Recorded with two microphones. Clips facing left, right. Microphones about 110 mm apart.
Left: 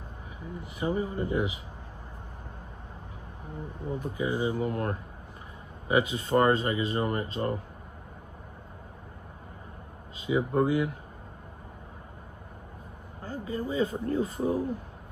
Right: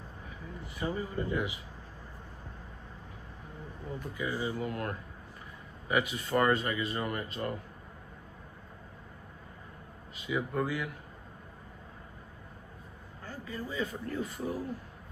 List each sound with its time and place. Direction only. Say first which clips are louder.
0.4 s speech: left 4 dB; 20° left (ahead or behind)
3.6 s speech: left 6 dB; 20° left (ahead or behind)
10.2 s speech: left 7 dB; 25° left (ahead or behind)
13.2 s speech: left 7 dB; 25° left (ahead or behind)
14.4 s speech: left 8 dB; 20° left (ahead or behind)